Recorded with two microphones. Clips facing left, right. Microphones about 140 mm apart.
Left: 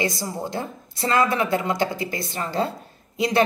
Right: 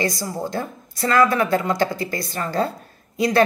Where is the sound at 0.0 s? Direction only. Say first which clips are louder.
Right 2 dB; 20° left (ahead or behind).